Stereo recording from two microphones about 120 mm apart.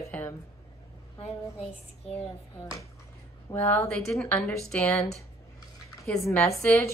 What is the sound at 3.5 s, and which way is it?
A woman's voice, 20° left (ahead or behind).